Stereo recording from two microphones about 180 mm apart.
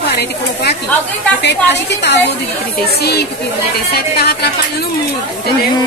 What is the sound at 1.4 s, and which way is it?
A woman's voice, 70° left (ahead or behind).